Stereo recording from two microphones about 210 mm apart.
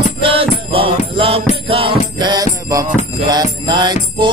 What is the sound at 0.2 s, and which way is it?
Music, 25° right (ahead or behind).